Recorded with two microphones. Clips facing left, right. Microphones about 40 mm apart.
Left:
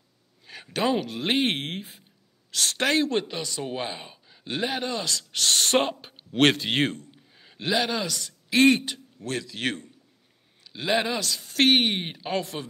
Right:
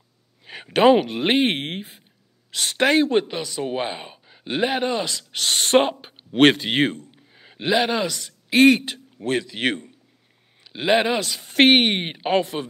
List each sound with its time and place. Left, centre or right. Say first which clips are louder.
0.5 s speech: right 10 dB; right
1.4 s a man's voice: right 4 dB; centre
8.6 s a man's voice: right 4 dB; right